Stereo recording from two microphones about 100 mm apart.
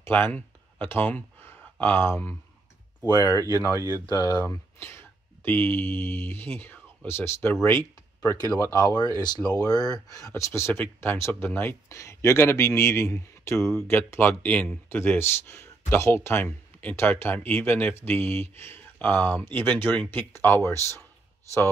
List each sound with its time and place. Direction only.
0.0 s speech: 20° left (ahead or behind)
3.2 s speech: 40° left (ahead or behind)
4.4 s speech: 25° left (ahead or behind)